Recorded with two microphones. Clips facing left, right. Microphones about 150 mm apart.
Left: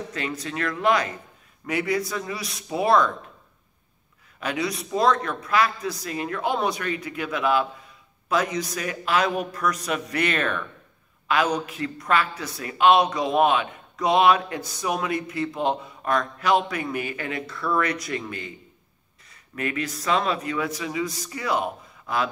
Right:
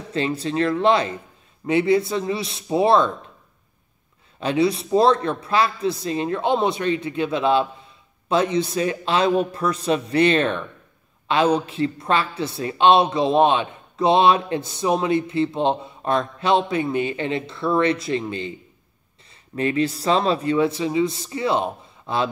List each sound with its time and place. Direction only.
0.1 s a woman's voice: 30° right (ahead or behind)
4.4 s a woman's voice: 30° right (ahead or behind)
19.5 s a woman's voice: 30° right (ahead or behind)